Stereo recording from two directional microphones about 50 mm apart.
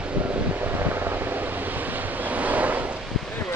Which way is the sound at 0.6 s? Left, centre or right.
Right.